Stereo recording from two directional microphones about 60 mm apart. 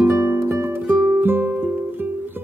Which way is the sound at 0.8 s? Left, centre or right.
Right.